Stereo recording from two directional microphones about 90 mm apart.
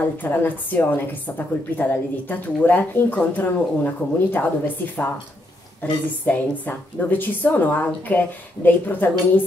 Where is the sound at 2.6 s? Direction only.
20° left (ahead or behind).